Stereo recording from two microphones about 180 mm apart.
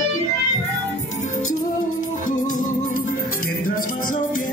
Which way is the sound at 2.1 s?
45° left (ahead or behind).